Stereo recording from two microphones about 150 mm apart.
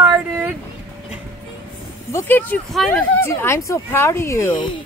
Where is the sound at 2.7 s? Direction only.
Centre (ahead or behind).